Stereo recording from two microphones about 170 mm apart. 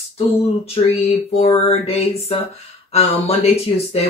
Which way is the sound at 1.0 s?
35° left (ahead or behind).